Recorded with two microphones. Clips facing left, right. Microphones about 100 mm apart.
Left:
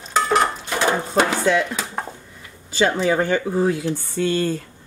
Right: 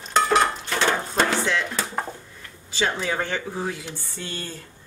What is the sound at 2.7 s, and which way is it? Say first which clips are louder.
Speech: left 7 dB; 45° left (ahead or behind).